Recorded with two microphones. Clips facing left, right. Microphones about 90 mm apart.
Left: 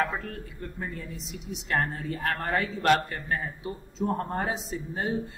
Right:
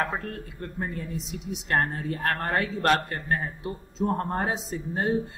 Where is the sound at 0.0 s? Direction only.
40° right (ahead or behind).